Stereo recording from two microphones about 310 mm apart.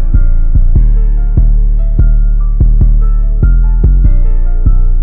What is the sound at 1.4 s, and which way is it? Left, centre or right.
Music, centre.